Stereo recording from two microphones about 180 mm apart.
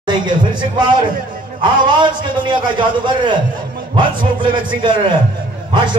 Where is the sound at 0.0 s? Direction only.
25° right (ahead or behind).